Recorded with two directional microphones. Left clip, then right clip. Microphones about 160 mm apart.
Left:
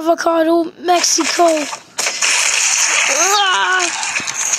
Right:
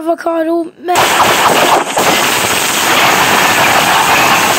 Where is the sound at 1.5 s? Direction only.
55° right (ahead or behind).